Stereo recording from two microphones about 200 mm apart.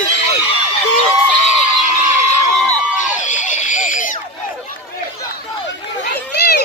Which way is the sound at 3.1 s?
40° left (ahead or behind).